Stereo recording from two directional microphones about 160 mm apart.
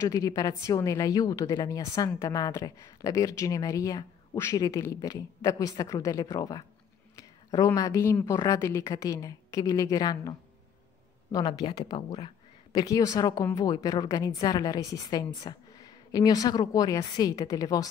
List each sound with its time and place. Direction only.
0.0 s a woman's voice: 20° left (ahead or behind)
11.3 s a woman's voice: 25° left (ahead or behind)